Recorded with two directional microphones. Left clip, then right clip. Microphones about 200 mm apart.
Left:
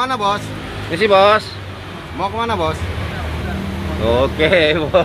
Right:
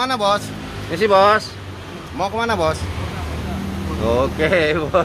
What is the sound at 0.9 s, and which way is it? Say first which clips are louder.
Speech: left 2 dB; centre (ahead or behind).